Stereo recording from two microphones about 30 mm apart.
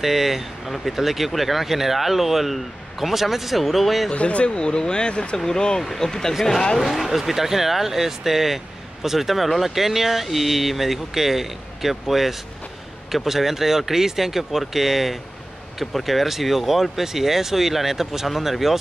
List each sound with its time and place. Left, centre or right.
0.0 s speech: centre
4.1 s speech: left
5.8 s speech: centre
6.8 s speech: centre